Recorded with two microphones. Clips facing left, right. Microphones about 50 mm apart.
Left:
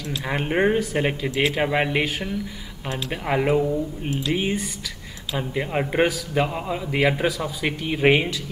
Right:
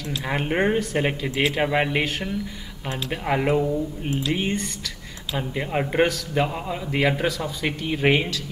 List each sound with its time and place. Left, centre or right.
0.1 s a man's voice: centre